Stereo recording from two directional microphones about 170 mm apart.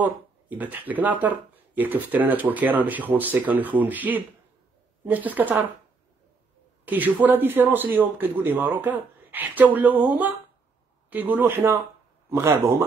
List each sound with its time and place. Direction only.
0.0 s speech: 10° right (ahead or behind)
6.9 s speech: 10° right (ahead or behind)